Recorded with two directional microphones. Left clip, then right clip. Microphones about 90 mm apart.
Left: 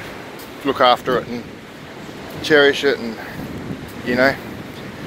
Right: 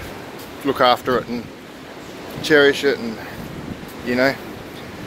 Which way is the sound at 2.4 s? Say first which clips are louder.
Left 1 dB; 50° right (ahead or behind).